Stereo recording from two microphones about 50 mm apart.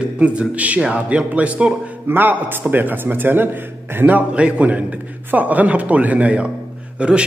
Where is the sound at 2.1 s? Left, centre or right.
Right.